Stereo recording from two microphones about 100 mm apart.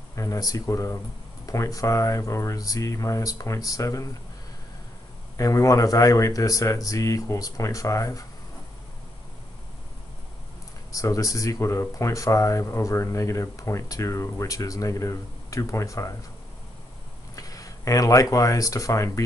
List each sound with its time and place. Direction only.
0.1 s speech: 35° left (ahead or behind)
5.4 s speech: 35° left (ahead or behind)
10.9 s speech: 35° left (ahead or behind)
17.4 s speech: 35° left (ahead or behind)